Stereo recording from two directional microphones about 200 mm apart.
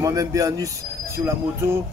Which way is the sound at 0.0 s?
15° right (ahead or behind).